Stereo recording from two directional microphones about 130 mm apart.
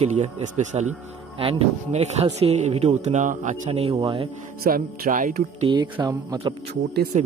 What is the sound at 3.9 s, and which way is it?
Speech, 40° right (ahead or behind).